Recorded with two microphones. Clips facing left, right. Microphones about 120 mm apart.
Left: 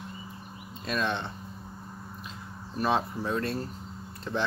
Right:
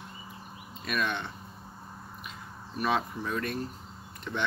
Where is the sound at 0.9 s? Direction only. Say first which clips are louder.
Left 2 dB; 25° left (ahead or behind).